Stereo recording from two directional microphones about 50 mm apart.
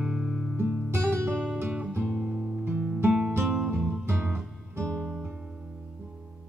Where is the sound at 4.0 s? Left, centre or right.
Right.